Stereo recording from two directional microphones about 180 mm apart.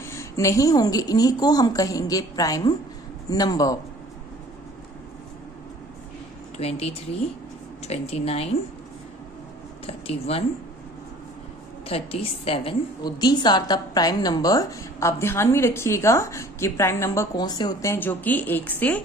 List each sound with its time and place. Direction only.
0.1 s a woman's voice: 15° left (ahead or behind)
6.6 s speech: 35° left (ahead or behind)
9.8 s speech: 35° left (ahead or behind)
11.9 s a woman's voice: 30° left (ahead or behind)
17.9 s speech: 10° left (ahead or behind)